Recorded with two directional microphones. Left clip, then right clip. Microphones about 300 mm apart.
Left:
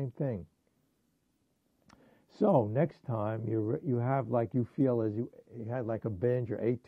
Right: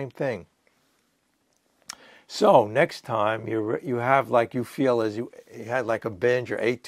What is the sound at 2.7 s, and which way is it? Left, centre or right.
Speech, centre.